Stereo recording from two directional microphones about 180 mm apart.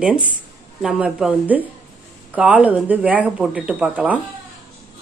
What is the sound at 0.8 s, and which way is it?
Speech, 5° right (ahead or behind).